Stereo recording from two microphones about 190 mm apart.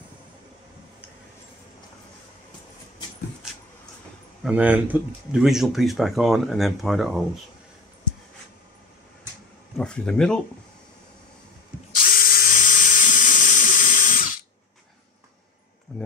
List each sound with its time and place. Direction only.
4.4 s speech: 5° right (ahead or behind)
9.8 s speech: 5° left (ahead or behind)
12.0 s drill: 50° left (ahead or behind)